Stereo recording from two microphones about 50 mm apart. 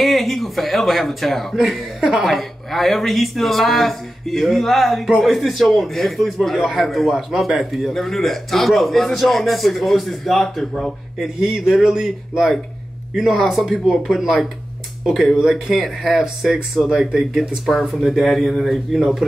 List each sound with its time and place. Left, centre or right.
0.0 s speech: centre
11.3 s speech: centre
15.5 s speech: centre
16.0 s speech: centre